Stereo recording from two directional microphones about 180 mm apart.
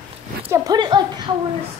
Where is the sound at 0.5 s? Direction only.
20° right (ahead or behind).